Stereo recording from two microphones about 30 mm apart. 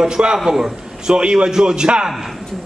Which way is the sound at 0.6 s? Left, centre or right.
Right.